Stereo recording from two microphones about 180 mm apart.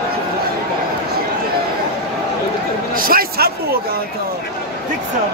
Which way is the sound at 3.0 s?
55° right (ahead or behind).